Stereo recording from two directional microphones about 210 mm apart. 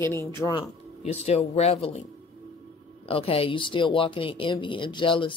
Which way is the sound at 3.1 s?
25° left (ahead or behind).